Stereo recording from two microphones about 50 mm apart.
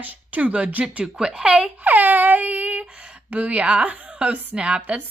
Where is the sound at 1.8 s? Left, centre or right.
Right.